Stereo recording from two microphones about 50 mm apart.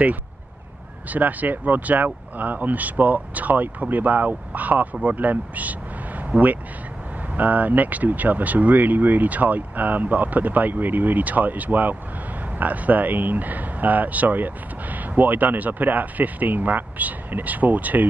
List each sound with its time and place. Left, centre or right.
1.1 s speech: right